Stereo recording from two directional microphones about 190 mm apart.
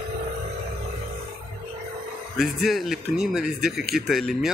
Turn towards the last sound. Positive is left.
turn(degrees=0)  # may be behind; listen again after turning